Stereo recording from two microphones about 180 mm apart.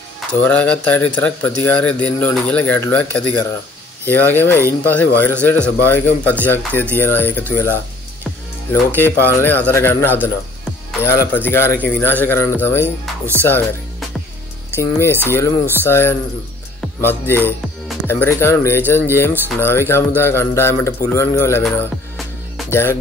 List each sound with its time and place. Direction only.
0.4 s speech: 10° left (ahead or behind)
8.9 s speech: 10° left (ahead or behind)
14.7 s speech: 15° left (ahead or behind)
22.7 s speech: 15° left (ahead or behind)